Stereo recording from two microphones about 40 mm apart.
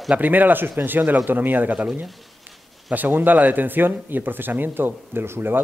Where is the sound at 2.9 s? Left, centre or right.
Right.